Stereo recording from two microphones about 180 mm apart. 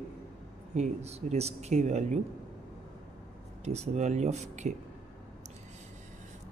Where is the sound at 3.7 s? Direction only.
40° right (ahead or behind).